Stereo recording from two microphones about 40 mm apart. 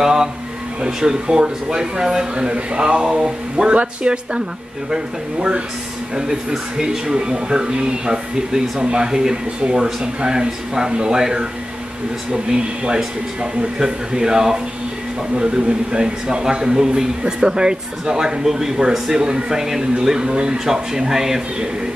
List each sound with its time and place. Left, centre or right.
0.0 s a sound: centre
0.8 s speech: centre
6.1 s speech: centre